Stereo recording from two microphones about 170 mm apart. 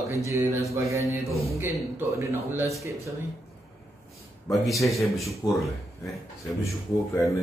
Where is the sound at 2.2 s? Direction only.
15° right (ahead or behind).